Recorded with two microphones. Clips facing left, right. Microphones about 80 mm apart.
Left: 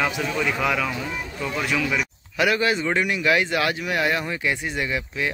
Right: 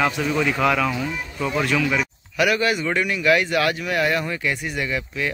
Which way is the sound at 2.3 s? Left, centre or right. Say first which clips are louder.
Right 1 dB; left.